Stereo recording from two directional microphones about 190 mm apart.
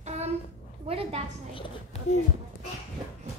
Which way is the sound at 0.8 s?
30° right (ahead or behind).